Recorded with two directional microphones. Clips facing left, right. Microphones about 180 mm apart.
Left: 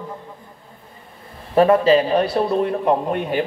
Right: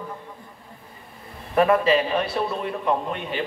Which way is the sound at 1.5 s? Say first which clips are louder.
Left 5 dB; 30° left (ahead or behind).